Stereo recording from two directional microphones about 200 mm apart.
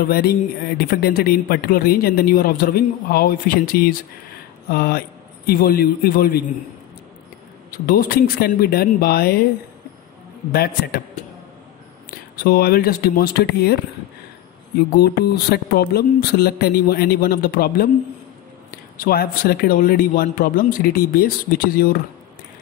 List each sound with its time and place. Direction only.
0.0 s a man's voice: 50° left (ahead or behind)
7.8 s a man's voice: 45° left (ahead or behind)
10.5 s a man's voice: 50° left (ahead or behind)
11.2 s a sound: 35° left (ahead or behind)
12.1 s a man's voice: 50° left (ahead or behind)
15.0 s a man's voice: 50° left (ahead or behind)